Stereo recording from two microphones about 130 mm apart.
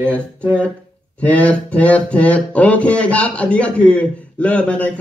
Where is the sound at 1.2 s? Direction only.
10° left (ahead or behind).